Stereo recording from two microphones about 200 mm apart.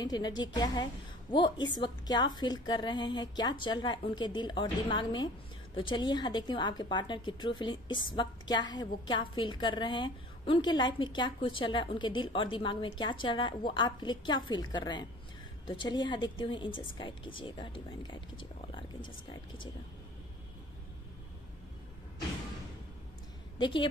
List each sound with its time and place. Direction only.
0.0 s a woman's voice: 20° left (ahead or behind)
23.6 s a woman's voice: 25° left (ahead or behind)